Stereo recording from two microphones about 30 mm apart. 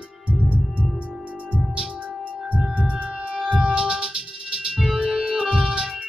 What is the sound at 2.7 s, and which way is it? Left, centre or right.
Heart sounds, right.